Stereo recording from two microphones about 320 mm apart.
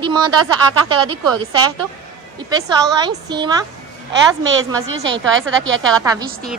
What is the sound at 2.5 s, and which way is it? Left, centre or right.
A woman's voice, centre.